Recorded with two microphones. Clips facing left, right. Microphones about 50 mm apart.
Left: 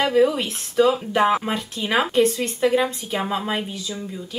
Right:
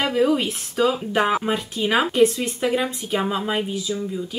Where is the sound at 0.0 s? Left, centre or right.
Centre.